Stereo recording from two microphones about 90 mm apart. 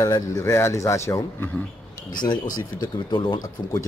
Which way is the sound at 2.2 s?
55° left (ahead or behind).